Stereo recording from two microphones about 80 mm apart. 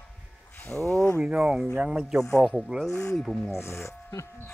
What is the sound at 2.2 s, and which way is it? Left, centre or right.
Speech, centre.